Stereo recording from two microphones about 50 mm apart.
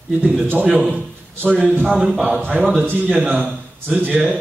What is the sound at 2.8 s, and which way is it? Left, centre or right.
Speech, right.